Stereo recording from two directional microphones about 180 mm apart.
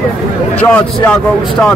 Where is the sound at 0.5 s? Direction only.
10° left (ahead or behind).